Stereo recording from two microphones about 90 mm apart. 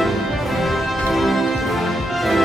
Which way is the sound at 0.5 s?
Centre (ahead or behind).